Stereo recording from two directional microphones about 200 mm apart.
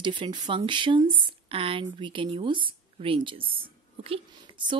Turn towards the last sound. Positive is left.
turn(degrees=-25)  # may be behind; listen again after turning